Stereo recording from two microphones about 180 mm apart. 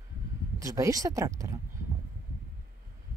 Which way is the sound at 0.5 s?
20° right (ahead or behind).